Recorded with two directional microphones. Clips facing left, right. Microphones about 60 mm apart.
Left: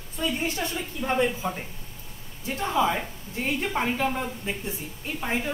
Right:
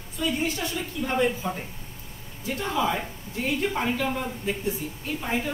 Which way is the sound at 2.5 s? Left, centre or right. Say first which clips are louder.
Left 2 dB; left.